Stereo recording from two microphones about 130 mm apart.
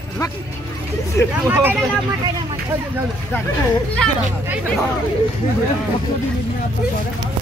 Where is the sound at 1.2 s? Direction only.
20° left (ahead or behind).